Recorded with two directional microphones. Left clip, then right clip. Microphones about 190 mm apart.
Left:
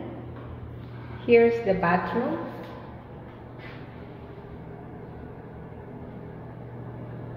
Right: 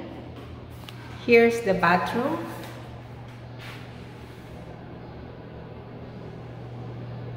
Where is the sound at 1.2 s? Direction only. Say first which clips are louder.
Right 1 dB; 20° right (ahead or behind).